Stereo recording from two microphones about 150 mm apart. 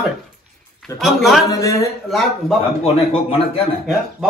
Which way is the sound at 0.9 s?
Centre (ahead or behind).